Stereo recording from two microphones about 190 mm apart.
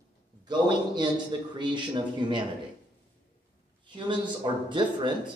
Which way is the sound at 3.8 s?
25° right (ahead or behind).